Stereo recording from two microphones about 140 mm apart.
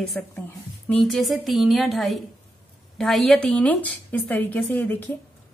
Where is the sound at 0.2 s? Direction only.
10° left (ahead or behind).